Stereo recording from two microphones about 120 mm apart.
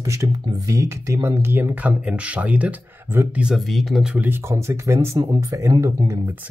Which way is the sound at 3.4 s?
Centre (ahead or behind).